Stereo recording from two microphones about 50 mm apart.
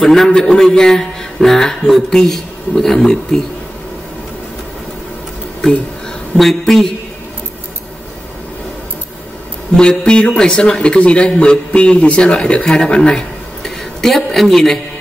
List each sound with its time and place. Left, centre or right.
0.0 s a woman's voice: centre
5.6 s a man's voice: centre
9.8 s a man's voice: centre